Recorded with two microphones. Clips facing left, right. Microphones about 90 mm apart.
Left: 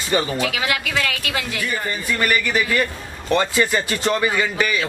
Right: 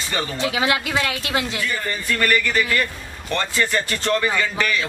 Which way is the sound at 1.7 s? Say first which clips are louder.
Left 1 dB; 10° left (ahead or behind).